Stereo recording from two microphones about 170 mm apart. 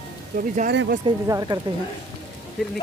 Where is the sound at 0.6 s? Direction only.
65° right (ahead or behind).